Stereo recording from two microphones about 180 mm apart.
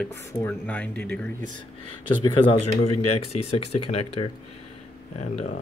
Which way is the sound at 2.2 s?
25° left (ahead or behind).